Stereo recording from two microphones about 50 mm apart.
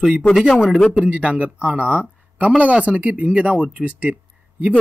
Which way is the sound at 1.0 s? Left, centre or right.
Right.